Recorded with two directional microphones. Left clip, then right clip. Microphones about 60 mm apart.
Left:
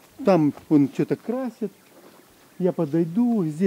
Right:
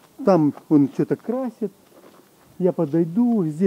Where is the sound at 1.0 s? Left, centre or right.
Left.